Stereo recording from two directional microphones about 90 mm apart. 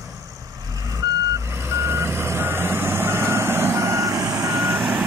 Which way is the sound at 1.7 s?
25° right (ahead or behind).